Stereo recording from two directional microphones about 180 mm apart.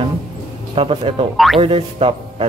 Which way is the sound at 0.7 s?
30° right (ahead or behind).